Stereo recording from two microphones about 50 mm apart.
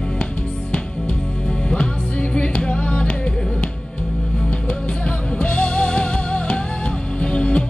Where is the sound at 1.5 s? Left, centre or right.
Centre.